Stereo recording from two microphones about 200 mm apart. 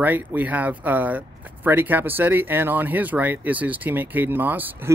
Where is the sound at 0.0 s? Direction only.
10° right (ahead or behind).